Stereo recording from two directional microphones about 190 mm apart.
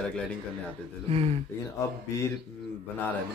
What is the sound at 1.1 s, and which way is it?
Speech, 30° right (ahead or behind).